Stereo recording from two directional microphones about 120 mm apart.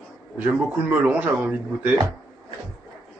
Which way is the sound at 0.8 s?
15° right (ahead or behind).